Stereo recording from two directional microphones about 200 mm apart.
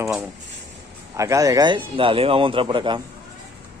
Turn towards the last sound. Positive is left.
turn(degrees=-25)  # may be behind; listen again after turning